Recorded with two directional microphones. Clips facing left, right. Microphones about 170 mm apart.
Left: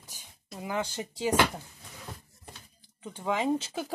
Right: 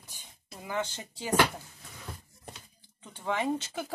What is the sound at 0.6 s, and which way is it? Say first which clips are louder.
Speech: left 2 dB; 15° left (ahead or behind).